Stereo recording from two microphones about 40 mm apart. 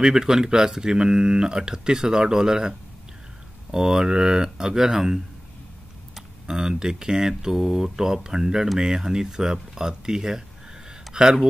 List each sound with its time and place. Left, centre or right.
0.0 s speech: centre
3.7 s speech: centre
6.4 s speech: centre